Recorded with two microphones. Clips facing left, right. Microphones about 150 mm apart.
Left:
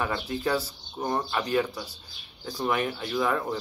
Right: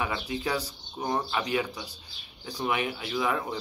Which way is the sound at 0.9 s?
5° right (ahead or behind).